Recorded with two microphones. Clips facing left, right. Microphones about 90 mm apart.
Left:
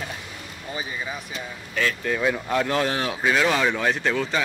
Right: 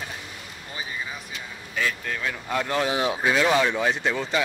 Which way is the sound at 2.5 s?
5° right (ahead or behind).